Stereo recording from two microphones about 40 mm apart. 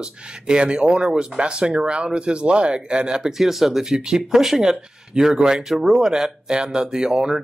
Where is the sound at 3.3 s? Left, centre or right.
Centre.